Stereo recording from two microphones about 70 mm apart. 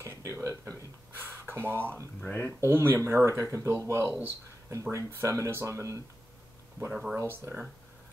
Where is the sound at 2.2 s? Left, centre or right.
Left.